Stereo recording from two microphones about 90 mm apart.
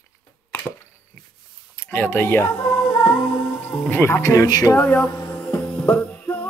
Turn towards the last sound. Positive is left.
turn(degrees=15)  # may be behind; listen again after turning